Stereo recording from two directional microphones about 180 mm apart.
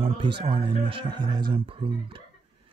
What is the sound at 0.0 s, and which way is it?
Speech, 30° right (ahead or behind).